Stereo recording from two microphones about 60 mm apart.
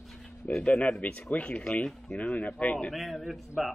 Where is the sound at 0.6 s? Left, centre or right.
Centre.